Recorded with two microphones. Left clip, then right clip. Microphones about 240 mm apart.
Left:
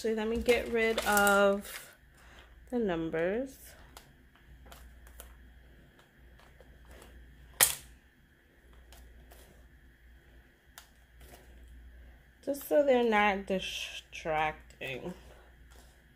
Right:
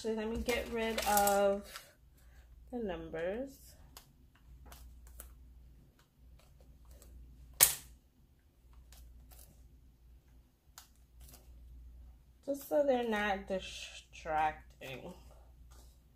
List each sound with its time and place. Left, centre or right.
0.0 s speech: left
2.7 s speech: left
12.6 s speech: left